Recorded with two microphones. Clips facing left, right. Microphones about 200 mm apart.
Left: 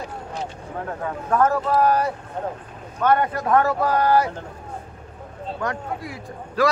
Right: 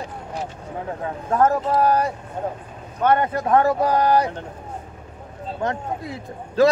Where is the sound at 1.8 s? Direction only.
35° right (ahead or behind).